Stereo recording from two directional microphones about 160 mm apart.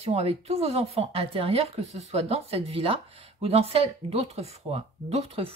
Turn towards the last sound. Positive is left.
turn(degrees=-40)  # may be behind; listen again after turning